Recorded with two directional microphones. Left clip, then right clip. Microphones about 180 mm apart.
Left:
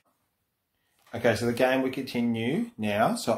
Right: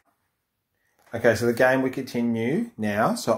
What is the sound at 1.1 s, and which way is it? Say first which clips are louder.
Speech: right 5 dB; 40° right (ahead or behind).